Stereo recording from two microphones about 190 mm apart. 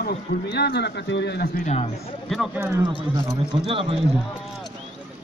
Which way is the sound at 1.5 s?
35° left (ahead or behind).